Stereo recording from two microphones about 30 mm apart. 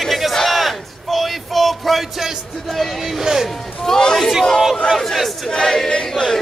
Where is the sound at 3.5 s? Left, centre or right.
Centre.